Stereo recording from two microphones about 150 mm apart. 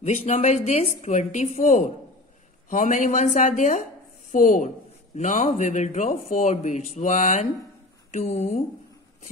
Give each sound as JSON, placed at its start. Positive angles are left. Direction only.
{"t": 0.0, "sound": "speech", "side_deg": 50}